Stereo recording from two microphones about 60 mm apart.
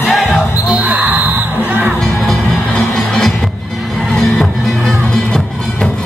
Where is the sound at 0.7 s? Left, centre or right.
Right.